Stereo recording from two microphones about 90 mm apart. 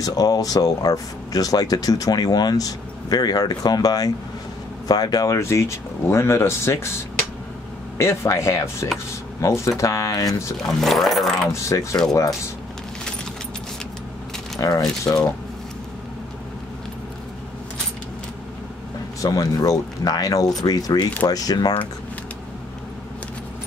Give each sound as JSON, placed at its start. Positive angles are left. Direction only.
{"t": 0.0, "sound": "speech", "side_deg": 45}
{"t": 5.4, "sound": "speech", "side_deg": 30}
{"t": 8.0, "sound": "speech", "side_deg": 30}
{"t": 10.6, "sound": "speech", "side_deg": 5}
{"t": 11.5, "sound": "speech", "side_deg": 35}
{"t": 14.6, "sound": "speech", "side_deg": 35}
{"t": 19.2, "sound": "speech", "side_deg": 45}